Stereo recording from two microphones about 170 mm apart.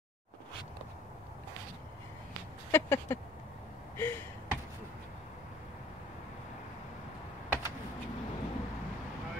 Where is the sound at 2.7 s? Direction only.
15° left (ahead or behind).